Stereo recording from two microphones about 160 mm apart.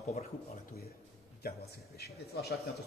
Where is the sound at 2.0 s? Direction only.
80° left.